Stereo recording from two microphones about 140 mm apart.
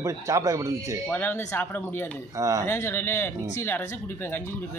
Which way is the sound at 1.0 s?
15° left (ahead or behind).